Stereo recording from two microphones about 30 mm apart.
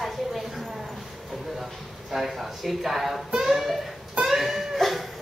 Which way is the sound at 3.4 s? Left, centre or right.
Centre.